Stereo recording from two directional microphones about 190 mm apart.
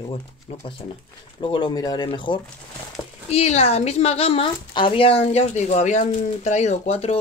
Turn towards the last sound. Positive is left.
turn(degrees=35)  # may be behind; listen again after turning